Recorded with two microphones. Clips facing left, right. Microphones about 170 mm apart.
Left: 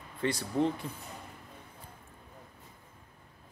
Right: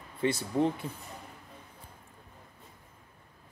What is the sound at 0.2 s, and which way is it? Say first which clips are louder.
Speech: right 2 dB; 20° right (ahead or behind).